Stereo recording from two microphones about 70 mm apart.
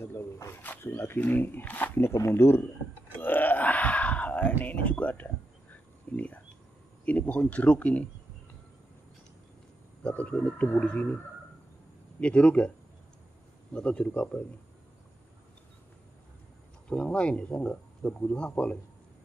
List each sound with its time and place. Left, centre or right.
0.0 s snake: left
0.9 s speech: left
2.0 s speech: left
3.2 s wail: left
7.1 s speech: left
10.0 s speech: centre
12.2 s speech: centre
13.7 s speech: centre
16.9 s speech: centre